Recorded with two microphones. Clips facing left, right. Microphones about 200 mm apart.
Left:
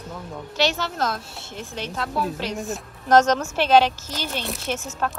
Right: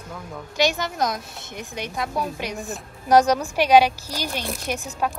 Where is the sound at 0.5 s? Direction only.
15° right (ahead or behind).